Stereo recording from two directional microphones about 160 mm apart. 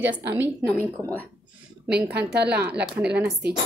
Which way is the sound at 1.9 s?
90° right.